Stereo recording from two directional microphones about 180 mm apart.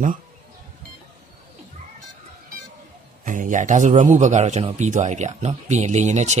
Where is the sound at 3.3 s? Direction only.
45° right (ahead or behind).